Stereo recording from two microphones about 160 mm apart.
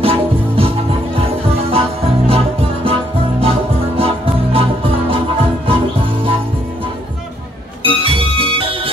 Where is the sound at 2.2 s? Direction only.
35° right (ahead or behind).